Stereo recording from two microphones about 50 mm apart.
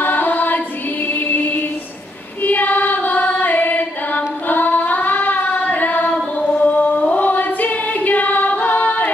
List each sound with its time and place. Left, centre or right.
0.0 s chant: left
1.0 s music: left
2.4 s singing: left
6.1 s a capella: left